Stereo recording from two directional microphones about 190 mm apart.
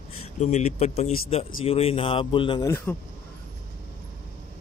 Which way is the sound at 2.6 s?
15° left (ahead or behind).